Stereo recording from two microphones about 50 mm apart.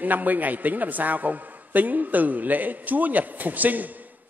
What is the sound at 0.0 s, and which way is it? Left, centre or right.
A man's voice, right.